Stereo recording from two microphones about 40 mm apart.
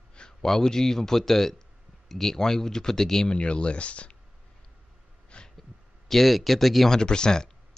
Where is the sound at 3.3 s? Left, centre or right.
Left.